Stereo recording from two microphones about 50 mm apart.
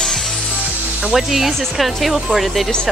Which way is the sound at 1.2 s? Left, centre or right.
Centre.